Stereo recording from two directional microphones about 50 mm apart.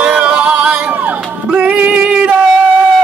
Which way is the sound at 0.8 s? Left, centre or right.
Right.